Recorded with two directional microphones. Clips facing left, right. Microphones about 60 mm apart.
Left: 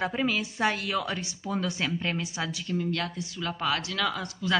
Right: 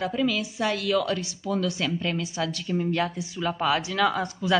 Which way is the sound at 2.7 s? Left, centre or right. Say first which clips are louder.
Right 4 dB; centre.